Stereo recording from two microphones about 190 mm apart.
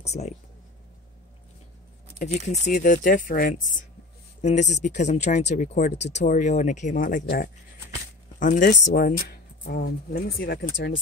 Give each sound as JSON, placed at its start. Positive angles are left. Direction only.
{"t": 0.0, "sound": "speech", "side_deg": 35}
{"t": 2.1, "sound": "speech", "side_deg": 40}